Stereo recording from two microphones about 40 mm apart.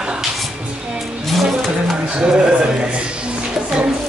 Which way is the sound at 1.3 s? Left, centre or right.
Centre.